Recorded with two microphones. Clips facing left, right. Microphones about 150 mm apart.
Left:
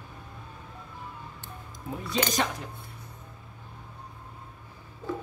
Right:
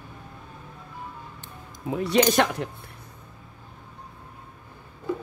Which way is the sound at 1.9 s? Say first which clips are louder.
Right 9 dB; 75° right (ahead or behind).